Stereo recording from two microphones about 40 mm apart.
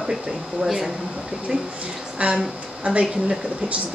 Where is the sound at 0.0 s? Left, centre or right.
Centre.